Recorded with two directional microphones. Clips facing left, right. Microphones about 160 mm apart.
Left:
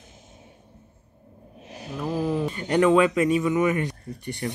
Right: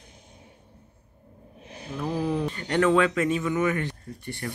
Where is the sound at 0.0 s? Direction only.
20° left (ahead or behind).